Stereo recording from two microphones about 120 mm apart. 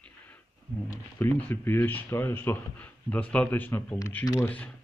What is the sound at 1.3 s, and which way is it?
A man's voice, 15° left (ahead or behind).